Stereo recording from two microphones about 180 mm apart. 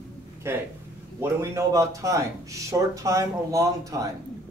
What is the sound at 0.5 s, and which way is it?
Speech, 15° right (ahead or behind).